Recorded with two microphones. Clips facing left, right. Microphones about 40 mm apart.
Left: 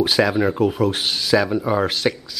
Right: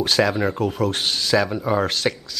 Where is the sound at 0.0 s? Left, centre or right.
Centre.